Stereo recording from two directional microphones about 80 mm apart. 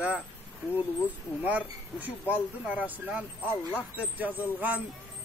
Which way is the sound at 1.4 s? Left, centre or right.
Centre.